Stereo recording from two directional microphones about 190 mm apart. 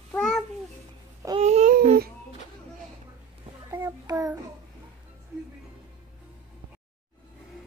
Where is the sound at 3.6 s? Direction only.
15° right (ahead or behind).